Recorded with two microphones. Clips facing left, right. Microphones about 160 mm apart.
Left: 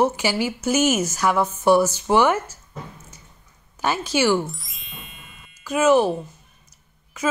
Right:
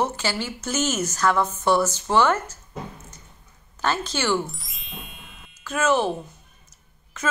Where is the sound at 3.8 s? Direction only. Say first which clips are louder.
Left 4 dB; 10° left (ahead or behind).